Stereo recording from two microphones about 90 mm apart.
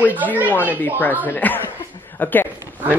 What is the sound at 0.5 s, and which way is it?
A man's voice, 20° left (ahead or behind).